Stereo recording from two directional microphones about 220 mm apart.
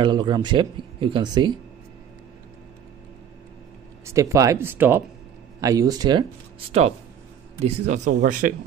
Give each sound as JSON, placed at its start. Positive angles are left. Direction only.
{"t": 0.0, "sound": "speech", "side_deg": -20}
{"t": 4.0, "sound": "speech", "side_deg": -15}
{"t": 7.6, "sound": "speech", "side_deg": -30}
{"t": 8.0, "sound": "speech", "side_deg": -40}